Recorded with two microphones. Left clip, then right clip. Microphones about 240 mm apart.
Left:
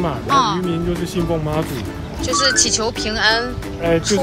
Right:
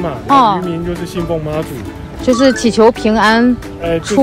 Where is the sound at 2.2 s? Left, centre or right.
Centre.